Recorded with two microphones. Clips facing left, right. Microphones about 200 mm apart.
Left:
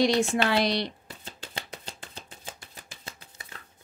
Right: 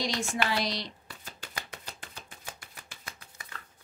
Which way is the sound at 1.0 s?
25° left (ahead or behind).